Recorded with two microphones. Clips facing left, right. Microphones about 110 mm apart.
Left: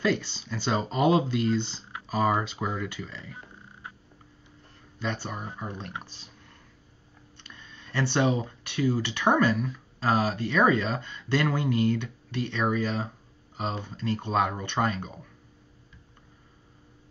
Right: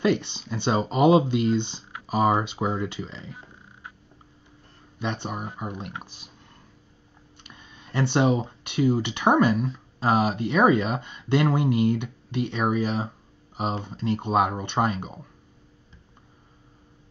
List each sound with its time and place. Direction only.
0.0 s speech: 20° right (ahead or behind)
4.9 s speech: 25° right (ahead or behind)
7.4 s speech: 15° right (ahead or behind)